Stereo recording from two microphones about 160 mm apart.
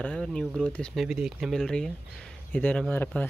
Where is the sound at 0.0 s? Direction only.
5° left (ahead or behind).